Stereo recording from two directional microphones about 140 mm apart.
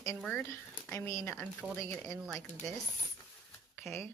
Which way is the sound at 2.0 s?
Centre (ahead or behind).